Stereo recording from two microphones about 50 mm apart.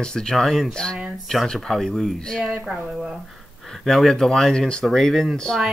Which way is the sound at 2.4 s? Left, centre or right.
Right.